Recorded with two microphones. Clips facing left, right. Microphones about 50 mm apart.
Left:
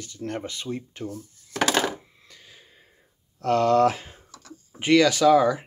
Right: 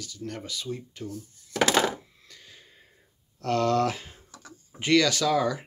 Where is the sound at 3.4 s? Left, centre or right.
Centre.